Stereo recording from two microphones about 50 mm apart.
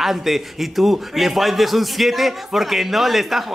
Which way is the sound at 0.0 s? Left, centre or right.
Centre.